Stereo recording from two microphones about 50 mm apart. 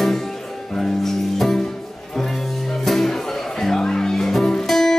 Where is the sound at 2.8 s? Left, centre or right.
Centre.